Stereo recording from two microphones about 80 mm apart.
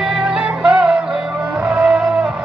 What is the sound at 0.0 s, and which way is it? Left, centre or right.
Music, centre.